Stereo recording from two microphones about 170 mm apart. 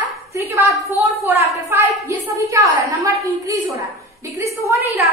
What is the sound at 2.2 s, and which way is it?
A woman's voice, 15° right (ahead or behind).